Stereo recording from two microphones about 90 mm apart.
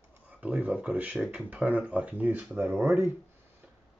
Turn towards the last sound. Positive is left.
turn(degrees=-20)  # may be behind; listen again after turning